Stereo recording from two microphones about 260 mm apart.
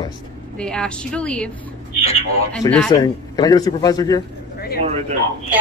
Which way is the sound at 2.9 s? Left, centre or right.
Centre.